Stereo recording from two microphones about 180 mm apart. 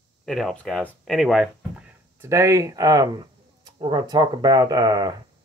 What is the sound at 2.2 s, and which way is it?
Speech, 15° right (ahead or behind).